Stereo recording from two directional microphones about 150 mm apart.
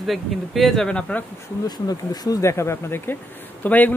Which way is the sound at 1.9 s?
25° left (ahead or behind).